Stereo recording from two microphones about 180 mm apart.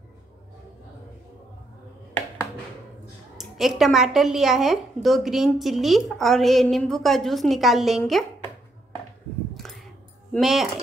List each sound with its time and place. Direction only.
3.3 s a woman's voice: centre (ahead or behind)
9.5 s a sound: centre (ahead or behind)
10.3 s a woman's voice: centre (ahead or behind)